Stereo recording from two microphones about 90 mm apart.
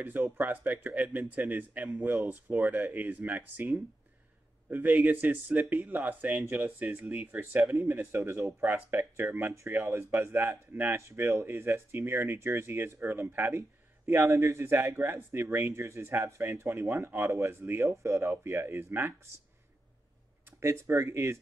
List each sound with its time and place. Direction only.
0.0 s speech: 20° right (ahead or behind)
20.6 s speech: 30° right (ahead or behind)